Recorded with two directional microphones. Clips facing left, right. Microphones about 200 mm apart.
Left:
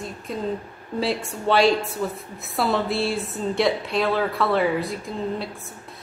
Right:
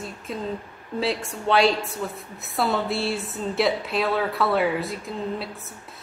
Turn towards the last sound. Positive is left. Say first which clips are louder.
# left 2 dB
turn(degrees=0)  # may be behind; listen again after turning